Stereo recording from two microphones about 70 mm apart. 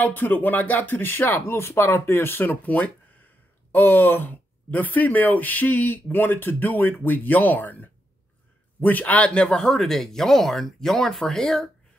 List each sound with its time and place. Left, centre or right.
0.0 s speech: left; by 11.7 s centre